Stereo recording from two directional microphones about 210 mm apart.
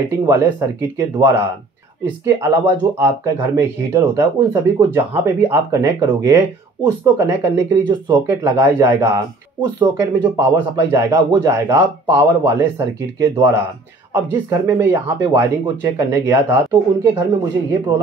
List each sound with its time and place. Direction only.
0.2 s speech: 15° right (ahead or behind)